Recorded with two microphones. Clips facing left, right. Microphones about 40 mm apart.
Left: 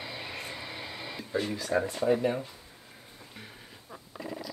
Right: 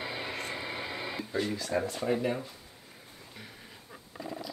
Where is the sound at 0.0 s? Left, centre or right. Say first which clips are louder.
Right 3 dB; centre.